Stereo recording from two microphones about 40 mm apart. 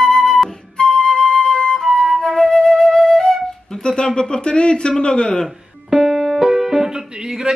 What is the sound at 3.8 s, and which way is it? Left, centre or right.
Speech, centre.